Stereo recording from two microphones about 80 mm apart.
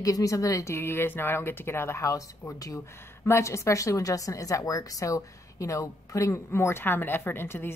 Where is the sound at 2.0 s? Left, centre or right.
Left.